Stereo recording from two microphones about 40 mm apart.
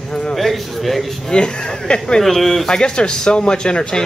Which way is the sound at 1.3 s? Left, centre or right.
Left.